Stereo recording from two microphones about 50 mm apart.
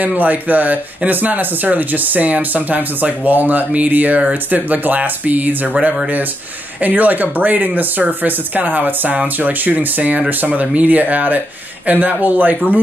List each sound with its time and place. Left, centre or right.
0.0 s speech: right